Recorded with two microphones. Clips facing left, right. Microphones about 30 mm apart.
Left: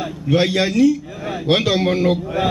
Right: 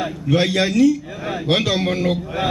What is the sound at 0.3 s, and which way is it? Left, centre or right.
A man's voice, centre.